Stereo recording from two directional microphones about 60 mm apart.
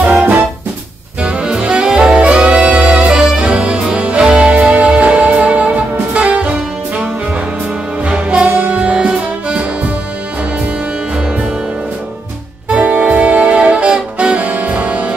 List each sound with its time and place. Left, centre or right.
1.2 s saxophone: centre
3.1 s music: centre
12.6 s music: centre